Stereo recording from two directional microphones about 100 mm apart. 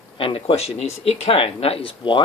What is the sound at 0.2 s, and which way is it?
Speech, 65° left (ahead or behind).